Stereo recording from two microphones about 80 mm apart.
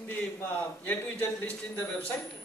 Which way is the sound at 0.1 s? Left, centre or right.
Left.